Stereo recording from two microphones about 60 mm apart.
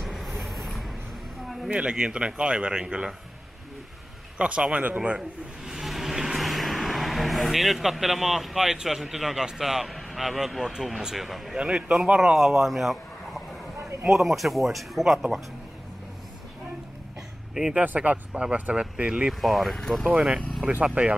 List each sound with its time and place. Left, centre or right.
0.0 s vehicle: centre
0.4 s a sound: centre
1.7 s speech: centre
4.4 s speech: centre
5.7 s speech: centre
11.5 s speech: centre
17.7 s speech: right
19.4 s speech: centre
20.1 s speech: centre